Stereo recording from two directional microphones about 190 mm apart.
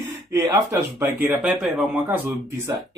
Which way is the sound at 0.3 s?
15° right (ahead or behind).